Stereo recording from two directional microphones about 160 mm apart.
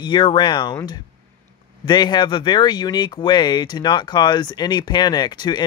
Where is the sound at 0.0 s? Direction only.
30° left (ahead or behind).